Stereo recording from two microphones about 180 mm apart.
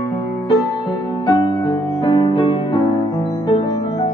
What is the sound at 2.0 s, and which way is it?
Music, 30° left (ahead or behind).